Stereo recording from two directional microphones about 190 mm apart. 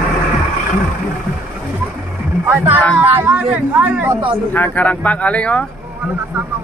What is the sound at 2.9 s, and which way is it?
Speech, 10° right (ahead or behind).